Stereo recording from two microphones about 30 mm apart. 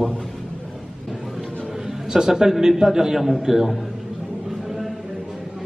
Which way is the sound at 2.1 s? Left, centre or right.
Right.